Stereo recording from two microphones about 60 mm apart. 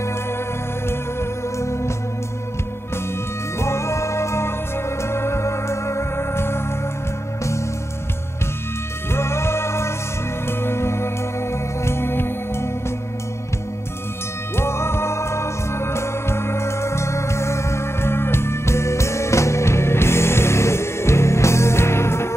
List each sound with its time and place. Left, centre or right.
1.6 s music: left
3.5 s music: left
9.1 s music: left
14.5 s music: left